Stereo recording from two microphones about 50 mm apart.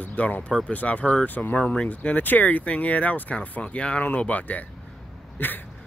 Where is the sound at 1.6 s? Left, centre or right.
Left.